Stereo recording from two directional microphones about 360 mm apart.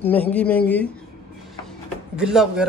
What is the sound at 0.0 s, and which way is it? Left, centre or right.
Speech, centre.